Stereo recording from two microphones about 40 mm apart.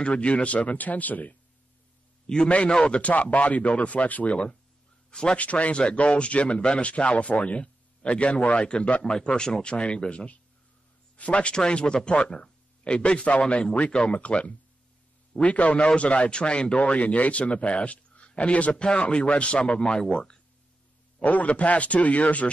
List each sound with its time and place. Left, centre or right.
0.0 s a man's voice: left
2.2 s a man's voice: centre
3.0 s a man's voice: left
11.5 s a man's voice: left
21.2 s a man's voice: left